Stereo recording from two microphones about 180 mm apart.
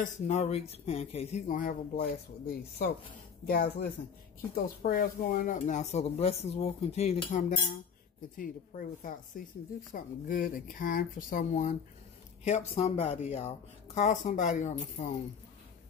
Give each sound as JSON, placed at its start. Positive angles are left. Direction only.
{"t": 0.0, "sound": "speech", "side_deg": 40}